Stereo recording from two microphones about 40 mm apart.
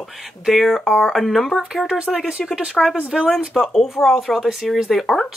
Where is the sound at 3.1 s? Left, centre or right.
Centre.